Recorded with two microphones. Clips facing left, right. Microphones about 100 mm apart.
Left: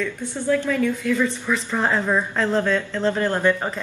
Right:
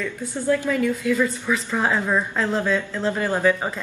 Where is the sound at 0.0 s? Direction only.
5° right (ahead or behind).